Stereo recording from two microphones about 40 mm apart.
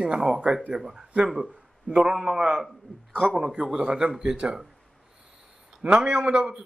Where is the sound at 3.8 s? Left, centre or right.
Right.